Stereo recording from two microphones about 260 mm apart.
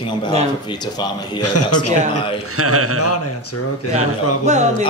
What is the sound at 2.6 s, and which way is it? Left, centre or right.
Speech, right.